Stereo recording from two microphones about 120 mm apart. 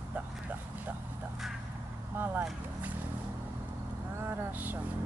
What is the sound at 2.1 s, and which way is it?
Vehicle, 15° right (ahead or behind).